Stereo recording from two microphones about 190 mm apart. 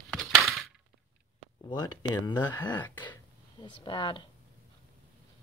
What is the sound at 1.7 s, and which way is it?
Speech, 20° left (ahead or behind).